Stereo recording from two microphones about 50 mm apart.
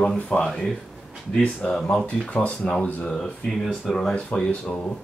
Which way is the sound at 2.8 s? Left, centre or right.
Left.